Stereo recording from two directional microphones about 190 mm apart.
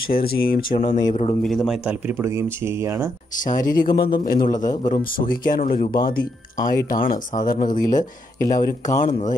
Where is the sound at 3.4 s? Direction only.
45° left (ahead or behind).